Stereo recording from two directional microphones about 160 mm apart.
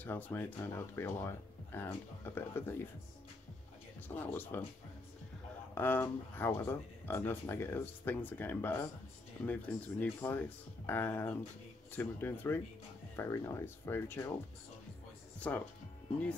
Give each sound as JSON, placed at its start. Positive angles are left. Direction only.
{"t": 0.0, "sound": "speech", "side_deg": 10}
{"t": 4.1, "sound": "speech", "side_deg": 10}
{"t": 5.8, "sound": "speech", "side_deg": 10}
{"t": 15.5, "sound": "speech", "side_deg": 10}